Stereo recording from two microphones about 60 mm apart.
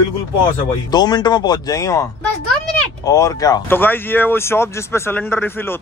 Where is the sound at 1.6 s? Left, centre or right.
Left.